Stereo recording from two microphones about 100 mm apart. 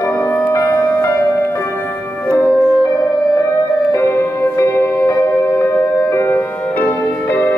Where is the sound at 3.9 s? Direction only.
30° left (ahead or behind).